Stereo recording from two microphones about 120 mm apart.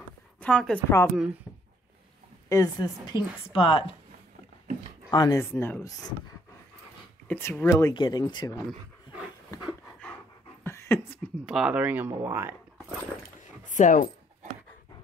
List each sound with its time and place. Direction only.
0.4 s a woman's voice: 10° left (ahead or behind)
0.8 s speech: 20° left (ahead or behind)
2.5 s speech: 30° left (ahead or behind)
3.5 s speech: 50° left (ahead or behind)
5.1 s speech: 35° left (ahead or behind)
5.4 s speech: 20° left (ahead or behind)
7.2 s speech: 15° left (ahead or behind)
7.9 s speech: 35° left (ahead or behind)
10.6 s a sound: 20° left (ahead or behind)
11.4 s speech: 5° right (ahead or behind)
13.7 s speech: 90° left